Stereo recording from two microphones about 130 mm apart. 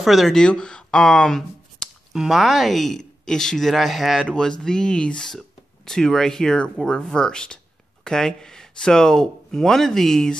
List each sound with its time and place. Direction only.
0.0 s speech: centre (ahead or behind)